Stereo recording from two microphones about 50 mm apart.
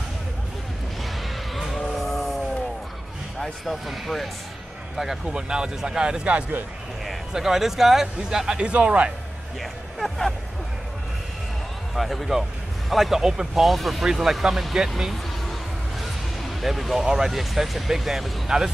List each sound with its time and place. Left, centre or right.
1.5 s music: centre
3.6 s speech: centre
7.3 s speech: centre; by 9.1 s right
9.6 s speech: centre
11.9 s speech: centre
16.0 s a sound: centre
17.0 s speech: centre